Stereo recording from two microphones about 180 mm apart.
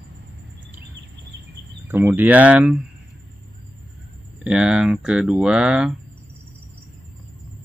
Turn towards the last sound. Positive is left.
turn(degrees=-5)  # may be behind; listen again after turning